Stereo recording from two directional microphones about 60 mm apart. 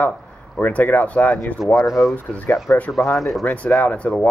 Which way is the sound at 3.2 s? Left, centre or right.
Centre.